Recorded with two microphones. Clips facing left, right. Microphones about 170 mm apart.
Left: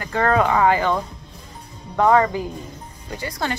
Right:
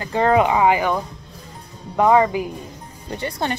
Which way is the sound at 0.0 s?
20° right (ahead or behind).